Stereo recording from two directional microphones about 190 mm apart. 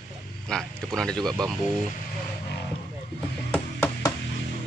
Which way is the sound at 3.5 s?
10° left (ahead or behind).